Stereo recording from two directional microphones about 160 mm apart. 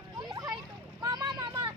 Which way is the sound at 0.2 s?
25° right (ahead or behind).